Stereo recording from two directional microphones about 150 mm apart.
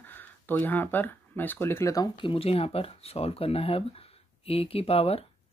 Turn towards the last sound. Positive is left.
turn(degrees=40)  # may be behind; listen again after turning